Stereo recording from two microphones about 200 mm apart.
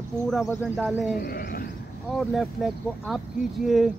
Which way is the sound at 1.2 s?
50° left (ahead or behind).